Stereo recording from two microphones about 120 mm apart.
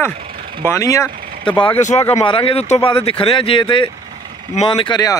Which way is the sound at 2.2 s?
45° left (ahead or behind).